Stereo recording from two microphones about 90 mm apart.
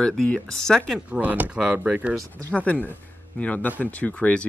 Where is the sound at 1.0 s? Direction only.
15° right (ahead or behind).